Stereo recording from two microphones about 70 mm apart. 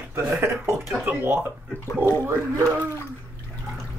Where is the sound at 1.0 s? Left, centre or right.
Right.